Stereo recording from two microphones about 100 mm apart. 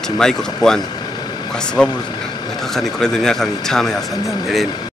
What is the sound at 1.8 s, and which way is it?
Speech, 5° left (ahead or behind).